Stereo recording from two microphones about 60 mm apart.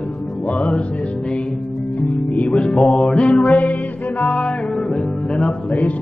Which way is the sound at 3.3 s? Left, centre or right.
Centre.